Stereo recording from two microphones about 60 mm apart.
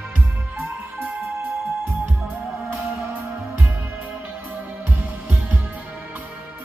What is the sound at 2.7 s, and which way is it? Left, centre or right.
Music, right.